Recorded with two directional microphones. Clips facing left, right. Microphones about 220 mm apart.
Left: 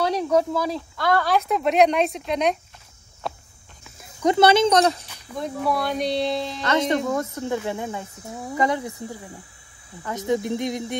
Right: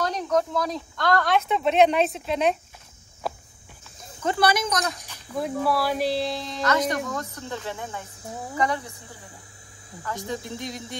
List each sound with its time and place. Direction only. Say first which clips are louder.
0.0 s speech: left 4 dB; 10° left (ahead or behind)
3.2 s walk: right 1 dB; centre (ahead or behind)
4.2 s speech: left 7 dB; 20° left (ahead or behind)
5.0 s speech: right 1 dB; 5° right (ahead or behind)
6.6 s speech: left 1 dB; 25° left (ahead or behind)
10.0 s speech: left 8 dB; 20° left (ahead or behind)